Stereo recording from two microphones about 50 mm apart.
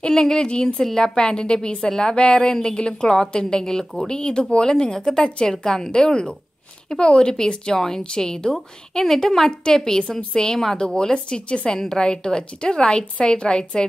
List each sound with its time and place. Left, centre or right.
0.0 s a woman's voice: centre